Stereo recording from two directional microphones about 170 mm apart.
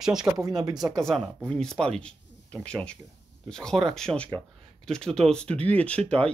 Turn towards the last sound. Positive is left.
turn(degrees=10)  # may be behind; listen again after turning